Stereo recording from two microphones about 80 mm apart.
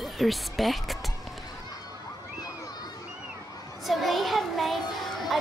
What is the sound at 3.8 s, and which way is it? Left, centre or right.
Child singing, centre.